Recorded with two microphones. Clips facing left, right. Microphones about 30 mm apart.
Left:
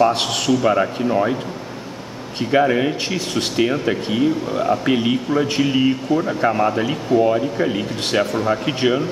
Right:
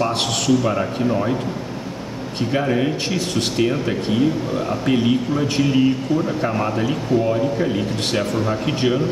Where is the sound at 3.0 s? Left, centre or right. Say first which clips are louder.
Even; centre.